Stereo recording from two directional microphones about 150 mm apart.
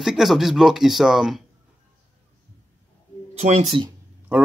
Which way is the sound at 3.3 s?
45° right (ahead or behind).